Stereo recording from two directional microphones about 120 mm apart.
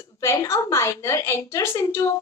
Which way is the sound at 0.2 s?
25° left (ahead or behind).